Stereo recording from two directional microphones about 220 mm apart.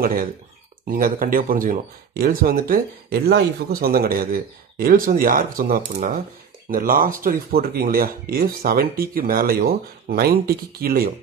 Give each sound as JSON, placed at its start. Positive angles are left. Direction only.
{"t": 0.0, "sound": "speech", "side_deg": -40}